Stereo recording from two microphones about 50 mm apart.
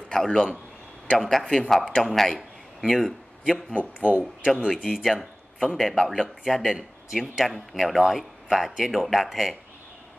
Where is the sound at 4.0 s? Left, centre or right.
Right.